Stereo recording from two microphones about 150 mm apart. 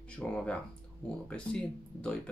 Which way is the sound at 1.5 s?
5° left (ahead or behind).